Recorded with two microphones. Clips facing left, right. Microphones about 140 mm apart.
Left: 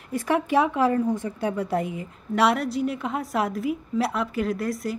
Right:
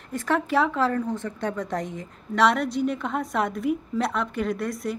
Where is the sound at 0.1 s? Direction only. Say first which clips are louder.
Left 2 dB; 10° left (ahead or behind).